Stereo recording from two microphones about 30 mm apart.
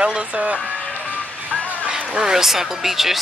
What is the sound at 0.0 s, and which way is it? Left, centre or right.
Music, right.